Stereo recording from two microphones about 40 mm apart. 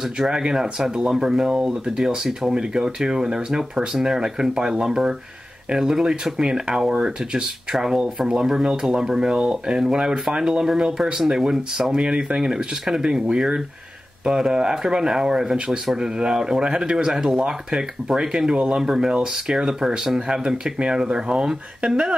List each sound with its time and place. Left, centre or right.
0.3 s speech: centre
18.8 s speech: centre